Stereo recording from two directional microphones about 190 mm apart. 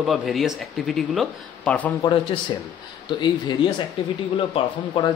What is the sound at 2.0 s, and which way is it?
A man's voice, 25° left (ahead or behind).